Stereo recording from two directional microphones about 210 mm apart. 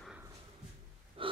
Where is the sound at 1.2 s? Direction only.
25° right (ahead or behind).